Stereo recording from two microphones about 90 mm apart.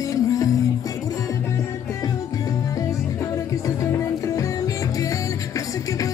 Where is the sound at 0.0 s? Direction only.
40° left (ahead or behind).